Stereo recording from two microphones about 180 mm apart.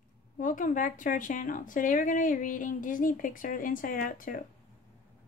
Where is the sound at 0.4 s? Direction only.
45° left (ahead or behind).